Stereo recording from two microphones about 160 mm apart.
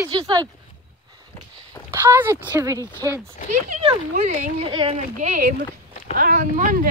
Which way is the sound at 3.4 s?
50° right (ahead or behind).